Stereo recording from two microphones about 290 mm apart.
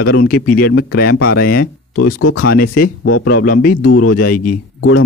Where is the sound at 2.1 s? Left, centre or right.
Left.